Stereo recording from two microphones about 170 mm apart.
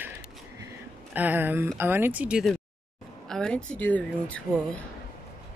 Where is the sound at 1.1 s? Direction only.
10° right (ahead or behind).